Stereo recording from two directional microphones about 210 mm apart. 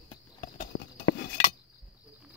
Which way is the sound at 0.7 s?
85° left.